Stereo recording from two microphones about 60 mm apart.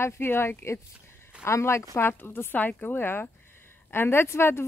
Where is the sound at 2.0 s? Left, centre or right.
Left.